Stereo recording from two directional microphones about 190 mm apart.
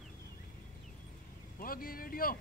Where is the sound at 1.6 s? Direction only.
50° left (ahead or behind).